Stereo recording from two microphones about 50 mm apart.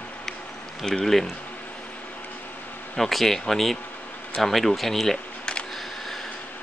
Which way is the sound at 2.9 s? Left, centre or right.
Centre.